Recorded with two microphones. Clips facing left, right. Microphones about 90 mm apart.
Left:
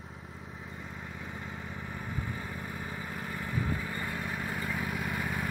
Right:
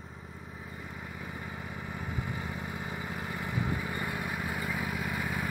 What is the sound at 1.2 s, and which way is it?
Vehicle, 5° right (ahead or behind).